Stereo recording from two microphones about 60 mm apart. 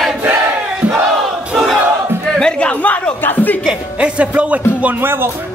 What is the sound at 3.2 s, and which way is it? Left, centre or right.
Speech, left.